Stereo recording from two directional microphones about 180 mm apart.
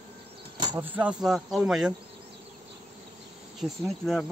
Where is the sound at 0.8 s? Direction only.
10° right (ahead or behind).